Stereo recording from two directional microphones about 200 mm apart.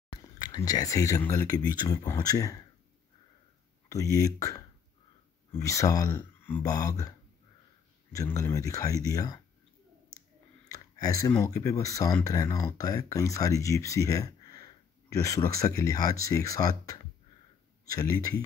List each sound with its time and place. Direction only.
0.4 s speech: 20° left (ahead or behind)
3.9 s speech: 15° left (ahead or behind)
10.7 s speech: 15° left (ahead or behind)